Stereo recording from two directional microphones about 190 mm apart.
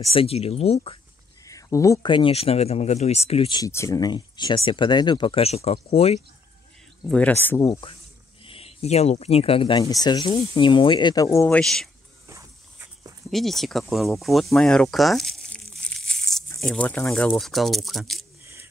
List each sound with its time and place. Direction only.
0.0 s speech: 30° left (ahead or behind)
1.4 s speech: 15° left (ahead or behind)
7.1 s speech: 5° left (ahead or behind)
8.5 s speech: 30° left (ahead or behind); by 11.9 s 5° left (ahead or behind)
12.3 s dog: 15° right (ahead or behind)
13.3 s speech: centre (ahead or behind)
18.4 s scissors: 15° right (ahead or behind)